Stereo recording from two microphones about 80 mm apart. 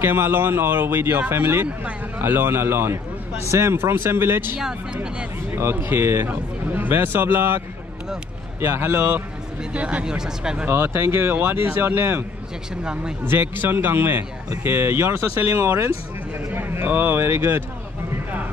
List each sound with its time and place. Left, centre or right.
0.0 s speech: right
4.6 s speech: centre
5.5 s speech: right
9.8 s speech: centre
10.7 s speech: right
12.8 s speech: centre
13.2 s speech: right